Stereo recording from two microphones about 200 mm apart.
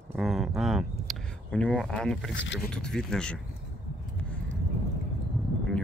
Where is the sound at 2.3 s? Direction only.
65° left (ahead or behind).